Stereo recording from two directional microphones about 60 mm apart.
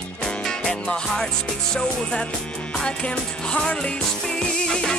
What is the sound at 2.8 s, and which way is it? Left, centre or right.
Music, centre.